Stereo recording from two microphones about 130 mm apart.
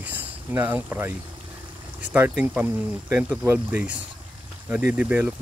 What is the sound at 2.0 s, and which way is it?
Speech, 10° right (ahead or behind).